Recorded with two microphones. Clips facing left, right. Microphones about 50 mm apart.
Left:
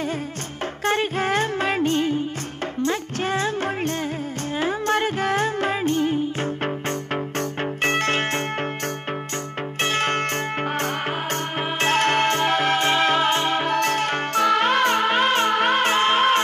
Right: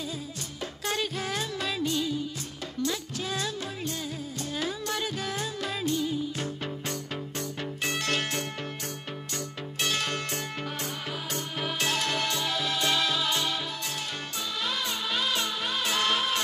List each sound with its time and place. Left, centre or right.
0.8 s music: left
9.8 s music: left